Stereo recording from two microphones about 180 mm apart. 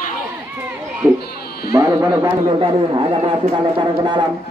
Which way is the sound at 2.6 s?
25° right (ahead or behind).